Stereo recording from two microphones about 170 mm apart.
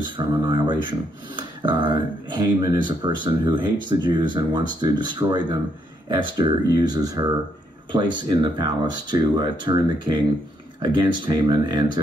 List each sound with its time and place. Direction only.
0.0 s speech: 30° right (ahead or behind)